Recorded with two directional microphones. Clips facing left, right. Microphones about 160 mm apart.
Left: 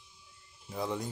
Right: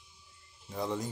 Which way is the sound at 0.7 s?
Centre (ahead or behind).